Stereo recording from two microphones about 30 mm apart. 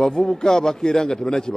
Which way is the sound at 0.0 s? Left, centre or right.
Left.